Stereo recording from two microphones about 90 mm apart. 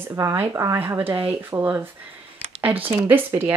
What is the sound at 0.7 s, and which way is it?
Speech, 25° right (ahead or behind).